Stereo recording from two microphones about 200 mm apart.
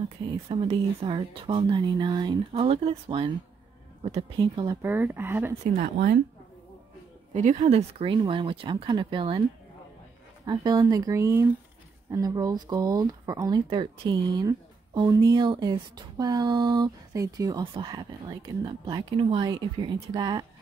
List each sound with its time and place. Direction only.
0.5 s speech: 30° right (ahead or behind)
4.8 s speech: 10° right (ahead or behind)
5.7 s speech: 45° right (ahead or behind)
7.3 s speech: 35° right (ahead or behind)
10.4 s speech: 20° right (ahead or behind)